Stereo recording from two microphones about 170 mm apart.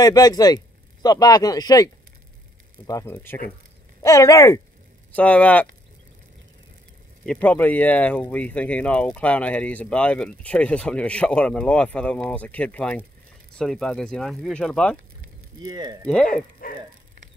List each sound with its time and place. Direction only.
0.0 s speech: 20° left (ahead or behind)
2.9 s speech: 15° left (ahead or behind)
5.1 s speech: 10° left (ahead or behind)
7.2 s speech: 10° left (ahead or behind)
15.6 s speech: 25° right (ahead or behind)
16.6 s a sound: 55° left (ahead or behind)